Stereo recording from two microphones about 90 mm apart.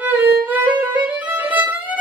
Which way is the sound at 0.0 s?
20° right (ahead or behind).